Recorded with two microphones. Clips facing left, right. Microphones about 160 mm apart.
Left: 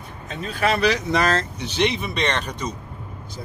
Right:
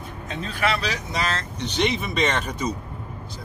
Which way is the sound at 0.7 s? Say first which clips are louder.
Left 7 dB; 60° left (ahead or behind).